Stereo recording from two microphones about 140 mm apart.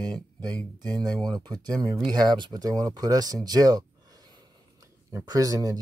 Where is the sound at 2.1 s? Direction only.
30° right (ahead or behind).